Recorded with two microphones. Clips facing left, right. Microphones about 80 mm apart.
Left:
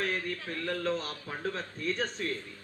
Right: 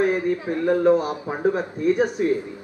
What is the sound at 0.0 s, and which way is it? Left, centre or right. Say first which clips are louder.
A man's voice: right 13 dB; centre.